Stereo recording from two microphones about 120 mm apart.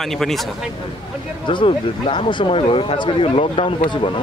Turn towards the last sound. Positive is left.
turn(degrees=45)  # may be behind; listen again after turning